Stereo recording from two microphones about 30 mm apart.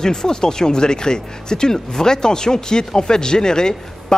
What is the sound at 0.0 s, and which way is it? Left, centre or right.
Speech, left.